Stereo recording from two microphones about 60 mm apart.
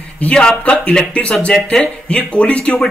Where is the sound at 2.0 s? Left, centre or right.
Centre.